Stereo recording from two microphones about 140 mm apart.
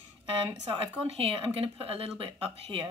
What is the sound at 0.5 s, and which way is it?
Speech, 45° right (ahead or behind).